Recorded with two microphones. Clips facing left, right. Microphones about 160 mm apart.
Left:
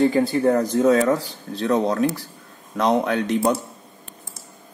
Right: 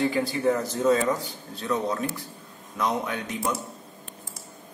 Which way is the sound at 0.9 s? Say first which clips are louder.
Left 6 dB; 75° left (ahead or behind).